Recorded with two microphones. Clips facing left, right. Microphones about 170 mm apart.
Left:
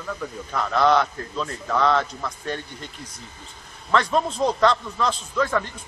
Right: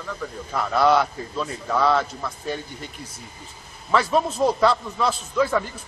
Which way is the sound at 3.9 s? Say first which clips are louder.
Right 1 dB; 5° right (ahead or behind).